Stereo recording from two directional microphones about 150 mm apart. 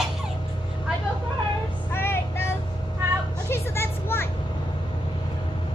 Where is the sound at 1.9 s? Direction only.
15° left (ahead or behind).